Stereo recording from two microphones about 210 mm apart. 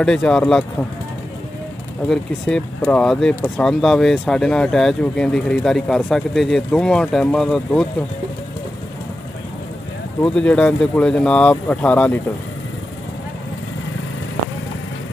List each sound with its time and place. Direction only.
0.0 s speech: 5° left (ahead or behind)
2.0 s speech: 5° left (ahead or behind)
10.2 s speech: 5° left (ahead or behind)